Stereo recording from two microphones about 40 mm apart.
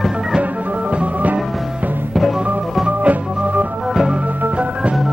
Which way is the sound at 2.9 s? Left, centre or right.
Right.